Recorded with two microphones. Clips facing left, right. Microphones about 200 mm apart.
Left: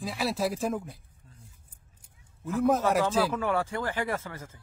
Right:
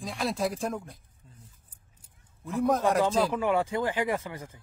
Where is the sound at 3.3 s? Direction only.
15° right (ahead or behind).